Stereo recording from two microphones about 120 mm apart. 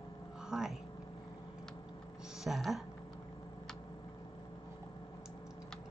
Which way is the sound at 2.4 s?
Centre (ahead or behind).